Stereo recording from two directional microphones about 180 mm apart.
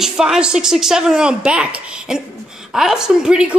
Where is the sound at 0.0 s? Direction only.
5° right (ahead or behind).